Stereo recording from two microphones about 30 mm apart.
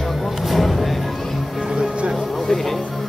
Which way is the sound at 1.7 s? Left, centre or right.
Right.